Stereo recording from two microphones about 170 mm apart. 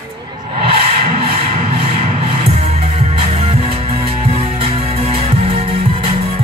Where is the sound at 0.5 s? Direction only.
35° right (ahead or behind).